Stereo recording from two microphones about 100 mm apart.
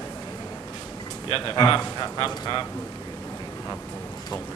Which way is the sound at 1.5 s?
45° left (ahead or behind).